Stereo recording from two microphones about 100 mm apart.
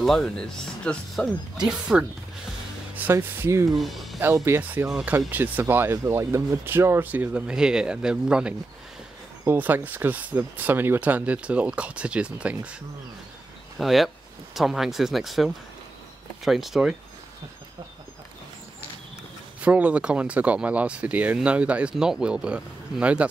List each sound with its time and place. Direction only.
0.0 s speech: 5° left (ahead or behind)
2.9 s speech: 20° right (ahead or behind)
3.6 s speech: centre (ahead or behind)
4.2 s speech: 25° right (ahead or behind)
4.8 s speech: 5° right (ahead or behind)
5.3 s speech: 20° right (ahead or behind)
13.7 s speech: centre (ahead or behind)
19.6 s speech: 15° right (ahead or behind)